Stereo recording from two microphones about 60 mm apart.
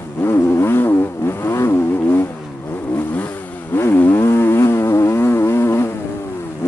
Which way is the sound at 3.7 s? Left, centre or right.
Left.